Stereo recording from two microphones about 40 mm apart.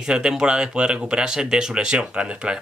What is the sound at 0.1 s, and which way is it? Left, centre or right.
Speech, centre.